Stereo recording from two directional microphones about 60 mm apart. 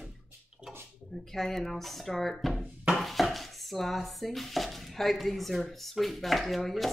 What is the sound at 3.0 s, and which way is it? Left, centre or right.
Chopping, centre.